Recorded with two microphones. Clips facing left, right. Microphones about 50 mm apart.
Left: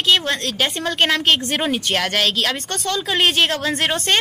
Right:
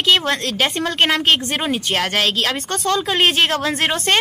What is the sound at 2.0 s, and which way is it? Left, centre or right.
A woman's voice, centre.